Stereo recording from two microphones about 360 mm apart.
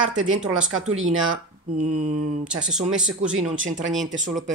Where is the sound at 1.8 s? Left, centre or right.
Right.